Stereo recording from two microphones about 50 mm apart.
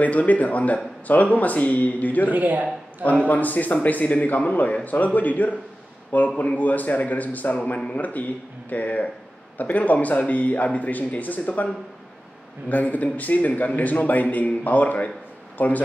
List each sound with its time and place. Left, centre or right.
0.0 s a man's voice: left
2.3 s a man's voice: right
3.0 s a man's voice: left